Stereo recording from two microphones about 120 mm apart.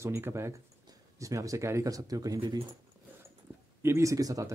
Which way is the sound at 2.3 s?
45° right (ahead or behind).